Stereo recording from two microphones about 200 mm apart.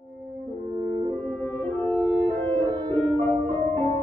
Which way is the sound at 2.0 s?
5° left (ahead or behind).